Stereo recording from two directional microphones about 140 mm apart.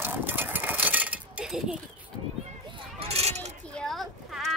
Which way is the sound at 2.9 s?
45° right (ahead or behind).